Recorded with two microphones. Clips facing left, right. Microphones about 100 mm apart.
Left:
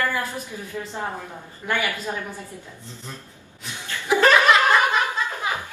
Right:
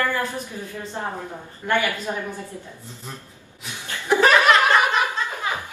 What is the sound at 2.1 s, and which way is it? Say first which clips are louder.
Speech: right 2 dB; 10° right (ahead or behind).